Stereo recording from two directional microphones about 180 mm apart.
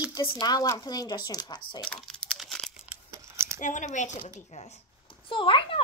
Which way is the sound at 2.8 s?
15° right (ahead or behind).